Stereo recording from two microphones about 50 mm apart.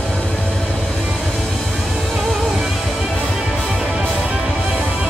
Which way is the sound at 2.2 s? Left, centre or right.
Centre.